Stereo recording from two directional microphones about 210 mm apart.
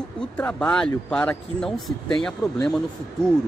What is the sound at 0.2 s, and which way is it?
Speech, 5° left (ahead or behind).